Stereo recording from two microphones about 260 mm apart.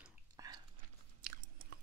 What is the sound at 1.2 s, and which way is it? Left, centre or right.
Chewing, right.